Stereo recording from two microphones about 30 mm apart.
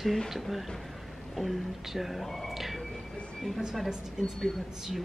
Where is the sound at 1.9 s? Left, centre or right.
Centre.